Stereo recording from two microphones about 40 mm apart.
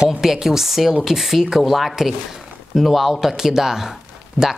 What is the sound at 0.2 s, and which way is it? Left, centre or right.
Speech, centre.